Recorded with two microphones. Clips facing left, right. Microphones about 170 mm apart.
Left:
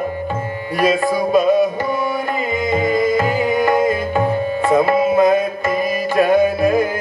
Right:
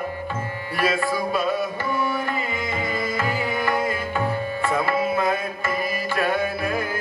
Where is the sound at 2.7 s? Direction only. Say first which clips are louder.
Left 13 dB; 15° left (ahead or behind).